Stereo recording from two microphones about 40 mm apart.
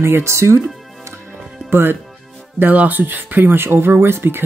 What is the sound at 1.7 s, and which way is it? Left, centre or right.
Speech, right.